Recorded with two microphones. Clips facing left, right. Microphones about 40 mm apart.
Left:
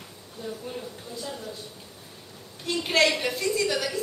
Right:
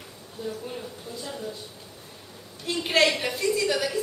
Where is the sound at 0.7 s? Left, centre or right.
Centre.